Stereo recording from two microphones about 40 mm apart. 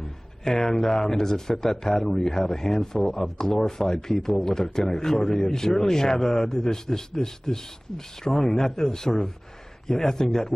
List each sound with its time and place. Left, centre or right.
0.4 s speech: centre